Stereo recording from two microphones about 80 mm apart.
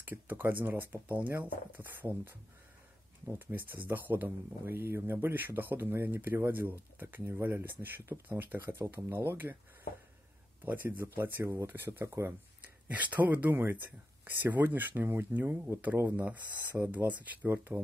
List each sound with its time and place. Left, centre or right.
0.0 s speech: right
10.6 s speech: right
12.8 s speech: centre